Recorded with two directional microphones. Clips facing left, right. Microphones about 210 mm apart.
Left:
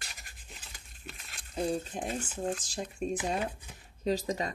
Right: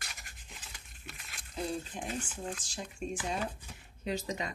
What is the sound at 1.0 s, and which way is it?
Speech, 35° left (ahead or behind).